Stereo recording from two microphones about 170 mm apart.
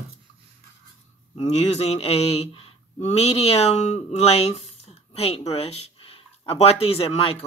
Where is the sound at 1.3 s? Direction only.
40° left (ahead or behind).